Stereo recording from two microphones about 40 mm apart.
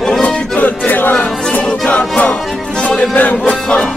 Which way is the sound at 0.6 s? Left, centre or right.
Left.